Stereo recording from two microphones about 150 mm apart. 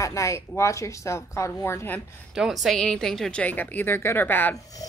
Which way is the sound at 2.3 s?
Centre (ahead or behind).